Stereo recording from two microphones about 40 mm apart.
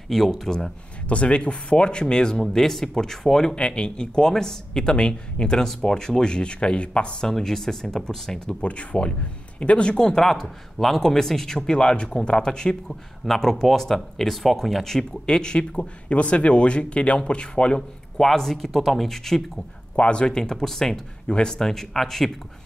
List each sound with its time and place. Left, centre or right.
0.1 s speech: centre
1.0 s speech: left
7.2 s speech: centre
15.2 s speech: left
18.1 s speech: centre
20.0 s speech: left
20.2 s speech: centre
21.3 s speech: centre